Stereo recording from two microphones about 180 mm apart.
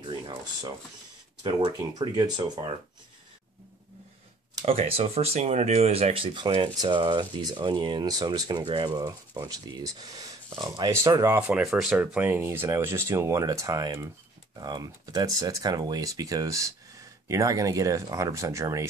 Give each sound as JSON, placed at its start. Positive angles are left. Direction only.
{"t": 0.1, "sound": "a sound", "side_deg": -25}
{"t": 1.4, "sound": "speech", "side_deg": -25}
{"t": 4.6, "sound": "speech", "side_deg": -30}